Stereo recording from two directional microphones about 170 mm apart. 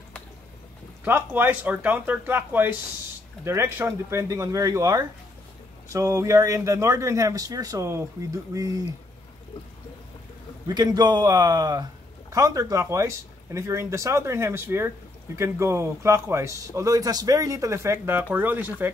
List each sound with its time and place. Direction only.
1.0 s speech: 10° right (ahead or behind)
10.7 s speech: 25° right (ahead or behind)